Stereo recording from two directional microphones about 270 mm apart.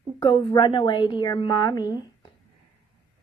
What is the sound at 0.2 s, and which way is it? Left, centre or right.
A woman's voice, centre.